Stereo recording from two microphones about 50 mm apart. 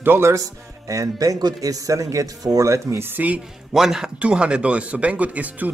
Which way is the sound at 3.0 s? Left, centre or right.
Right.